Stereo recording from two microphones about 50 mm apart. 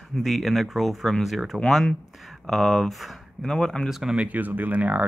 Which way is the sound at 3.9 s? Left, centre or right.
Centre.